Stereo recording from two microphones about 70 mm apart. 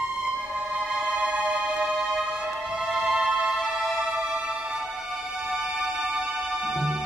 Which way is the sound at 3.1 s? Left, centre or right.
Centre.